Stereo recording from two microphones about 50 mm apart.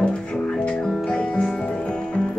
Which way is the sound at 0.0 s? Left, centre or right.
Left.